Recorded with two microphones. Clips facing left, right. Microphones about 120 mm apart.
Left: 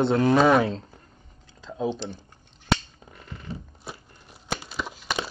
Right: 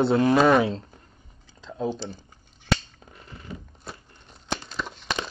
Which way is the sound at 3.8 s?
5° left (ahead or behind).